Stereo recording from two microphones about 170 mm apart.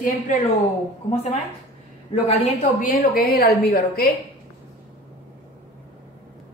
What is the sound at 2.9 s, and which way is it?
Speech, 65° left (ahead or behind).